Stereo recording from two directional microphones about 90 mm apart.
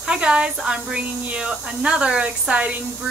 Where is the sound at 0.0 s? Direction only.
10° right (ahead or behind).